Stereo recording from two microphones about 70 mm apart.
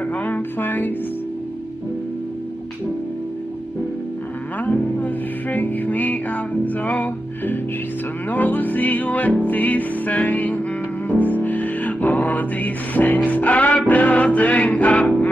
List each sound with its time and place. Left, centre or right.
0.2 s music: left
4.6 s music: left